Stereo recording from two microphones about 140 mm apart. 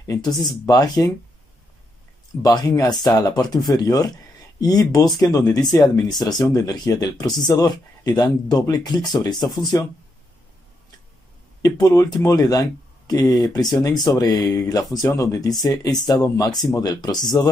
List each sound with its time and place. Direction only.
0.0 s speech: 25° left (ahead or behind)
2.4 s speech: 25° left (ahead or behind)
11.6 s speech: 25° left (ahead or behind)